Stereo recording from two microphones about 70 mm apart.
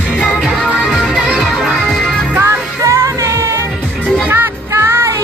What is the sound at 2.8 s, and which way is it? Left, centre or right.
Music, right.